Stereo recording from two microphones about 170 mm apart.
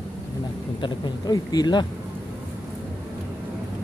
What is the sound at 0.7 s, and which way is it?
Speech, 25° left (ahead or behind).